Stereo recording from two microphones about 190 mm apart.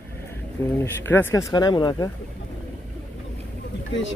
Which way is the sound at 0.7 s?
10° left (ahead or behind).